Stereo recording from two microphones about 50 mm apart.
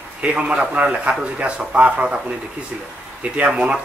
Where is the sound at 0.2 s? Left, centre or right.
Right.